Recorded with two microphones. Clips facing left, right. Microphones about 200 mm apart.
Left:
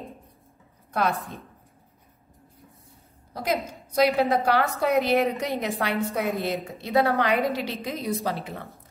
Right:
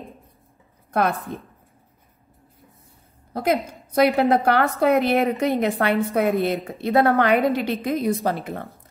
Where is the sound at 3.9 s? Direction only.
55° right (ahead or behind).